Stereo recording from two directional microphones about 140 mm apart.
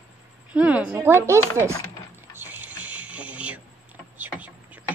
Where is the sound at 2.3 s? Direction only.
15° right (ahead or behind).